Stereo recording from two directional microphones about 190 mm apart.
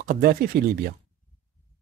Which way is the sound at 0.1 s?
50° right (ahead or behind).